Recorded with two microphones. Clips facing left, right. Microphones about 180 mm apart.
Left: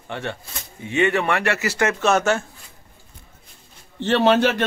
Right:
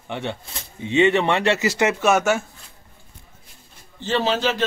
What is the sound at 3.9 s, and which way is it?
Speech, 65° left (ahead or behind).